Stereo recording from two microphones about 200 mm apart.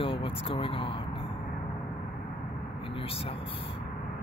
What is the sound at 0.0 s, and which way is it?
Speech, 25° left (ahead or behind).